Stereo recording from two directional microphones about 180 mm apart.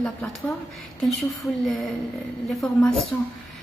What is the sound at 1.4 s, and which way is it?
Speech, 15° left (ahead or behind).